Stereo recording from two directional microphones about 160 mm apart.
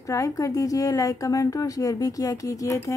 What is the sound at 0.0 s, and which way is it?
A woman's voice, 20° left (ahead or behind).